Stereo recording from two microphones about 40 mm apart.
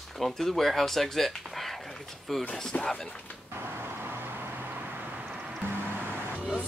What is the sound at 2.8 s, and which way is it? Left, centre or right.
Speech, left.